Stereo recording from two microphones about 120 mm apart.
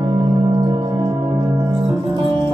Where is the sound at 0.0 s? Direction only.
40° right (ahead or behind).